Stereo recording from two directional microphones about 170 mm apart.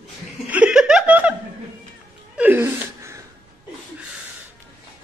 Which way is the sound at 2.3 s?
10° right (ahead or behind).